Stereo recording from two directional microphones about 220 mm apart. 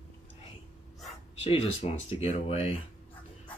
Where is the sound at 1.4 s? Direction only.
25° left (ahead or behind).